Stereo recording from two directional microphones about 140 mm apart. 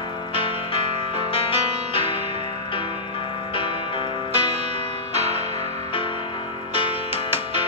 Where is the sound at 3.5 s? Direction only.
40° left (ahead or behind).